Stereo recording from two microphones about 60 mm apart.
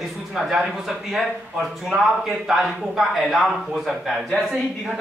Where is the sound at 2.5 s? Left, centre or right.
Centre.